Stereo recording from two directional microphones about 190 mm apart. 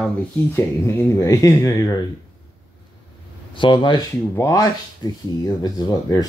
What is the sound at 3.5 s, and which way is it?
Speech, 25° left (ahead or behind).